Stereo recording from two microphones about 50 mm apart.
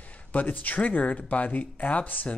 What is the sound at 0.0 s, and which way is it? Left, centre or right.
Speech, left.